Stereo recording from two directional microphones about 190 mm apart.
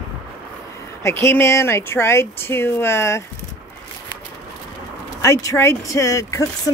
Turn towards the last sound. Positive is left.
turn(degrees=15)  # may be behind; listen again after turning